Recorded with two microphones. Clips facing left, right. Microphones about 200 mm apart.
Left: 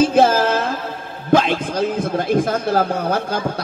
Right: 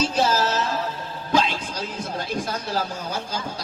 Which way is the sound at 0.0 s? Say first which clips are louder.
Left 8 dB; 55° left (ahead or behind).